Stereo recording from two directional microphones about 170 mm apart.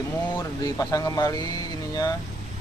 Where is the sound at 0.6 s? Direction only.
20° left (ahead or behind).